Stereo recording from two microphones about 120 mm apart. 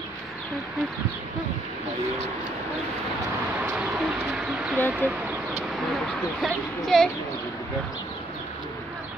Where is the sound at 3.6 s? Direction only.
10° right (ahead or behind).